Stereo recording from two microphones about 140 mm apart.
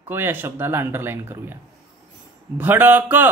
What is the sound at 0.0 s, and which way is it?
Speech, 15° right (ahead or behind).